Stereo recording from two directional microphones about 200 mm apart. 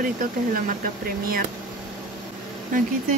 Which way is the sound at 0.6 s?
45° right (ahead or behind).